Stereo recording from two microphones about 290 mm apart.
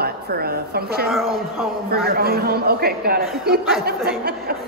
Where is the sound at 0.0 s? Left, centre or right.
Right.